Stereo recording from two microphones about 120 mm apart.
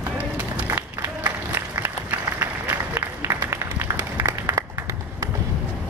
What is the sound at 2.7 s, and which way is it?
Applause, 20° right (ahead or behind).